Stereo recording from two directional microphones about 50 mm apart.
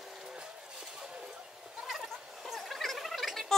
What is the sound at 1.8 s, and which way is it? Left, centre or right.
Goat, centre.